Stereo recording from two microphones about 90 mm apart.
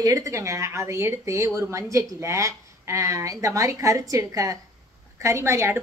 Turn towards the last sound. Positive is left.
turn(degrees=-30)  # may be behind; listen again after turning